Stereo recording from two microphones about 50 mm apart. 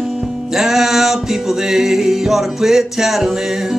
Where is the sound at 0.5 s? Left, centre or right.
Centre.